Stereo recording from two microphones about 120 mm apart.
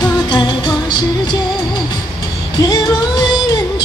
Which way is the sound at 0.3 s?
40° left (ahead or behind).